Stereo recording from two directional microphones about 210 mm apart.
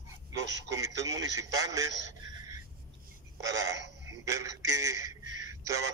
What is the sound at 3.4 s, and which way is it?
A man's voice, 15° right (ahead or behind).